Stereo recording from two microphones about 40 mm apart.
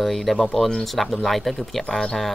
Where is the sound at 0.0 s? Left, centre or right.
Centre.